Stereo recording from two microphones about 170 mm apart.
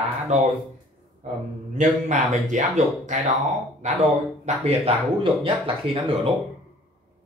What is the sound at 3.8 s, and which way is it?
Speech, 45° right (ahead or behind).